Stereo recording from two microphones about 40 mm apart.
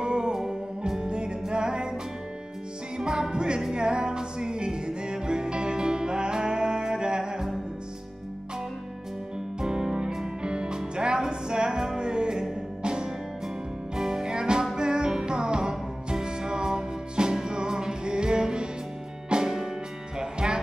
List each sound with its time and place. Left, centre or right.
0.0 s music: centre
3.0 s music: centre
9.6 s music: centre